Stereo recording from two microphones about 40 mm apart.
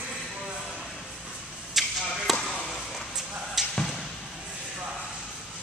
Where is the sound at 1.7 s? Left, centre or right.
Centre.